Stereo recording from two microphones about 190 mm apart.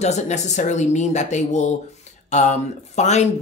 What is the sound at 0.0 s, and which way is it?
Speech, 35° left (ahead or behind).